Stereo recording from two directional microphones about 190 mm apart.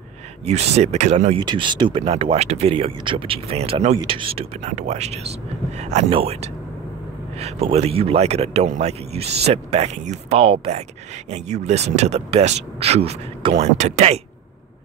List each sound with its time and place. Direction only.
0.5 s speech: 35° right (ahead or behind)
1.4 s speech: 25° right (ahead or behind)